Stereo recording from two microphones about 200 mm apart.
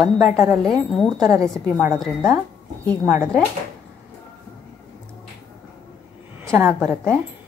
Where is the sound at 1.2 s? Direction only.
15° right (ahead or behind).